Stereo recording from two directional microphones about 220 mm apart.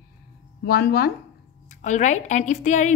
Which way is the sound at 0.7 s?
45° left (ahead or behind).